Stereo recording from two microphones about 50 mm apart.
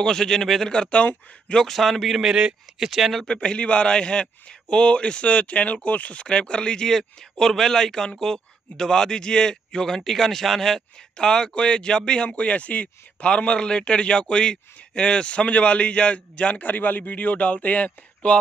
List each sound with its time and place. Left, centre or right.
0.0 s speech: centre
0.7 s a man's voice: left
1.6 s a man's voice: centre
2.2 s speech: centre
2.9 s a man's voice: centre
3.3 s a man's voice: left